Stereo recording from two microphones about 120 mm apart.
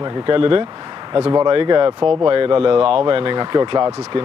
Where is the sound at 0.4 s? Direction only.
45° right (ahead or behind).